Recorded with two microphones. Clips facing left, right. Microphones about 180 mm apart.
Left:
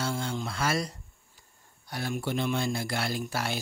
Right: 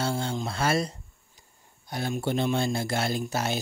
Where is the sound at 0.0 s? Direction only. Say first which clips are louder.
Right 3 dB; 30° right (ahead or behind).